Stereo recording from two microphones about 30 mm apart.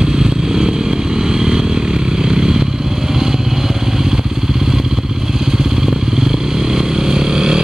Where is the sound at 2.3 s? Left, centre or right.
Right.